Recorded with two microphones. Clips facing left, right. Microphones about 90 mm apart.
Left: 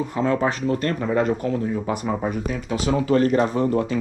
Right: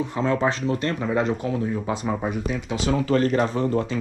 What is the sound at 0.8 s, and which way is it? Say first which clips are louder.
Speech: left 2 dB; centre (ahead or behind).